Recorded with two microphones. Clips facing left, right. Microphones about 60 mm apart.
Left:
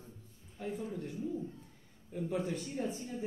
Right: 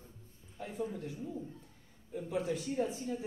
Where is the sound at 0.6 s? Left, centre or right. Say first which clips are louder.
Even; centre.